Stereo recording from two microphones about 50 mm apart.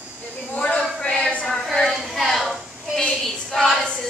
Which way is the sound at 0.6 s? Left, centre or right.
Left.